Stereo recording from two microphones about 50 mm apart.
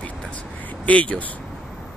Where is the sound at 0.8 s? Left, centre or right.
Left.